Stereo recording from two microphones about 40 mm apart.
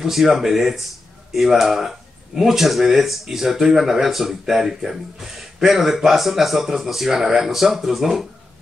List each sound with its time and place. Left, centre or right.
0.0 s speech: centre